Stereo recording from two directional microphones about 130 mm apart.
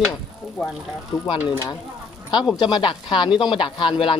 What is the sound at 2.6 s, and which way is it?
Speech, 40° left (ahead or behind).